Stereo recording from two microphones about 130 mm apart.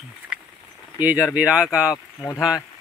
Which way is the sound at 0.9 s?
10° right (ahead or behind).